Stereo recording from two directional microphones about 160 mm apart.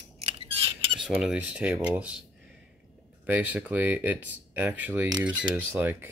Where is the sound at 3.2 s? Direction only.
10° right (ahead or behind).